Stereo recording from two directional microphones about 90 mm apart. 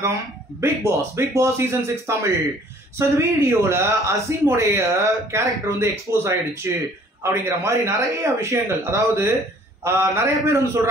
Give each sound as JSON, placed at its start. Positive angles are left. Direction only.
{"t": 0.6, "sound": "speech", "side_deg": -30}